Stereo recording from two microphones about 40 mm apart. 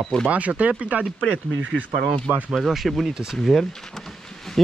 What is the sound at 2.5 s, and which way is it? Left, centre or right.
Speech, centre.